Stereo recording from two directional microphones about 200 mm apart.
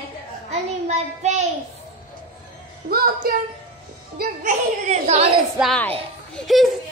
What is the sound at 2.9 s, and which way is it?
Speech, 50° right (ahead or behind).